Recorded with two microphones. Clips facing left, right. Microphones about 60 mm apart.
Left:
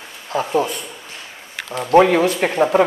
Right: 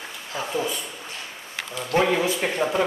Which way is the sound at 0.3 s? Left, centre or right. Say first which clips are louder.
Left 8 dB; left.